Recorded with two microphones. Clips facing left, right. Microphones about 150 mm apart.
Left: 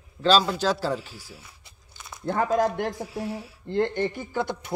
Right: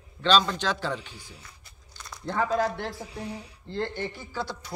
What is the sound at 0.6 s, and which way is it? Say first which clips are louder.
Speech: left 4 dB; 35° left (ahead or behind).